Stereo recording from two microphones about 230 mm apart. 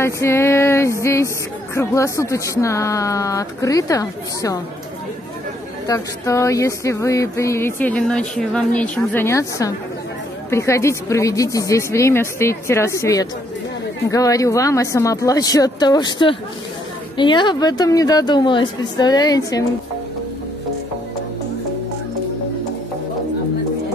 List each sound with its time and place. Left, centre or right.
0.0 s speech: centre
5.9 s speech: centre